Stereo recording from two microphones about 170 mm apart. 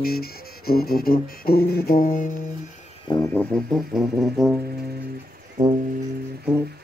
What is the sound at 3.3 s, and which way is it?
Speech, centre (ahead or behind).